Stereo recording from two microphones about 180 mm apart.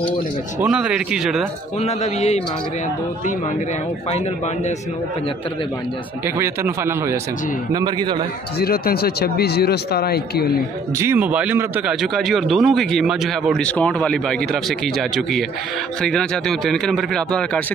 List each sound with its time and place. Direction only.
0.6 s a man's voice: 5° right (ahead or behind)
1.8 s a man's voice: 35° left (ahead or behind)
6.2 s a man's voice: 15° right (ahead or behind)
7.7 s a man's voice: 25° right (ahead or behind)
8.5 s speech: 60° left (ahead or behind)
11.0 s a man's voice: 10° right (ahead or behind); by 17.6 s 5° left (ahead or behind)